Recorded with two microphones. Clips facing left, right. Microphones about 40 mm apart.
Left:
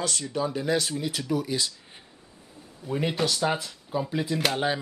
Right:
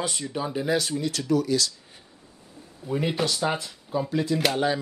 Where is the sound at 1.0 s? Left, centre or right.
Centre.